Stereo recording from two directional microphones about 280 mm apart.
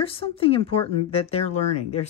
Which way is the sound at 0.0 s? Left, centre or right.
Centre.